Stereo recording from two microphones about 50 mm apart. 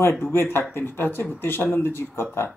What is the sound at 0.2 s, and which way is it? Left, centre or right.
Speech, left.